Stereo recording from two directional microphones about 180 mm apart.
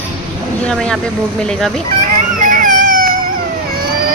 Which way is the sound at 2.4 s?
50° right (ahead or behind).